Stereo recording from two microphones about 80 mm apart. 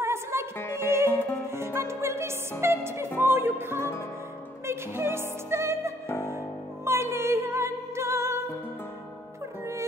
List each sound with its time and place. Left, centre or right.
0.0 s music: right
1.0 s music: left
1.5 s music: right